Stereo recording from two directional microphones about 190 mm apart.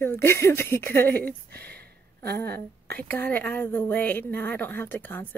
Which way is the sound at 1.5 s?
10° left (ahead or behind).